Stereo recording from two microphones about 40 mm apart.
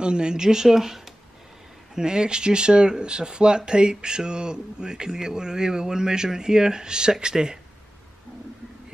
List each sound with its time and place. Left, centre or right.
0.0 s speech: right
2.0 s speech: centre